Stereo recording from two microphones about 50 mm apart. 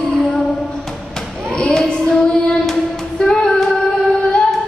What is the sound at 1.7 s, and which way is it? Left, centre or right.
Child singing, centre.